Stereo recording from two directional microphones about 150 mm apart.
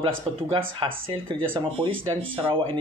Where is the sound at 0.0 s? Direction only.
30° right (ahead or behind).